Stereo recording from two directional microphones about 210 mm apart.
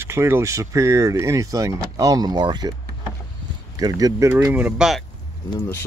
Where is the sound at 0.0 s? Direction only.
10° right (ahead or behind).